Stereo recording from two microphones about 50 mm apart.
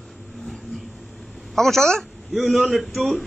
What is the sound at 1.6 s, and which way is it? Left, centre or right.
Speech, centre.